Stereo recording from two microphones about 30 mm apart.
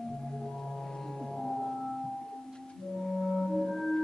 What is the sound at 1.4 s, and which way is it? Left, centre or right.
Music, centre.